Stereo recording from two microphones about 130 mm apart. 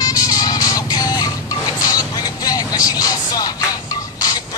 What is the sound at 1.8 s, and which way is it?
Vehicle, 30° left (ahead or behind).